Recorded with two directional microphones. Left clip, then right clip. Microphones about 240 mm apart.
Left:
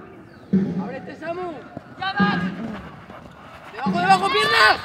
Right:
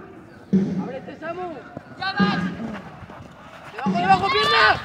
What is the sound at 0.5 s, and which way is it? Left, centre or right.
Basketball bounce, right.